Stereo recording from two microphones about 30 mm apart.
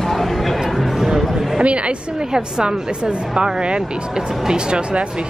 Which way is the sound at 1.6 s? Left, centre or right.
Right.